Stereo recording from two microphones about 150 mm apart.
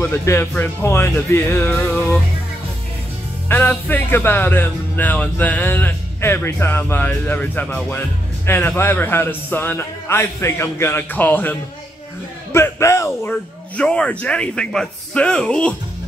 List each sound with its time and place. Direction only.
0.0 s speech: 15° left (ahead or behind)
1.7 s music: 5° left (ahead or behind)
3.4 s speech: 15° left (ahead or behind)
12.5 s speech: 15° left (ahead or behind)
13.3 s speech: 5° left (ahead or behind)